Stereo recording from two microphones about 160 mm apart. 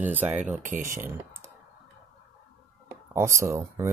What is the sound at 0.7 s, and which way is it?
Speech, 55° right (ahead or behind).